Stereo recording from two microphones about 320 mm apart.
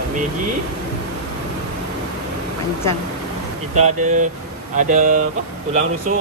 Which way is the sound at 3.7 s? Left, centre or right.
Right.